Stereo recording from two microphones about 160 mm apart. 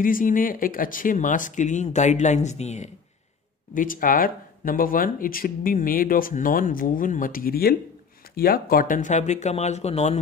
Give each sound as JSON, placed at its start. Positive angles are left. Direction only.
{"t": 0.0, "sound": "speech", "side_deg": 60}
{"t": 3.7, "sound": "speech", "side_deg": 60}